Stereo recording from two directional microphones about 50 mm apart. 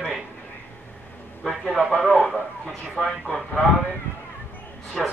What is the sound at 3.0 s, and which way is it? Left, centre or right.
Speech, centre.